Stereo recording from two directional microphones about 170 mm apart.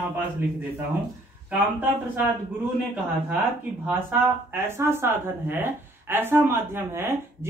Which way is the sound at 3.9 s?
15° right (ahead or behind).